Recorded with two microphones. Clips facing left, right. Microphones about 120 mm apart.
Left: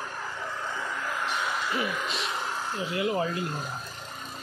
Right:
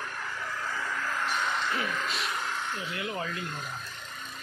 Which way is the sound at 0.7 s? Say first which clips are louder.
Right 1 dB; 15° left (ahead or behind).